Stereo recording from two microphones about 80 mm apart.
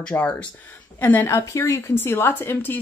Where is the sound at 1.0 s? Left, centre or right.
Left.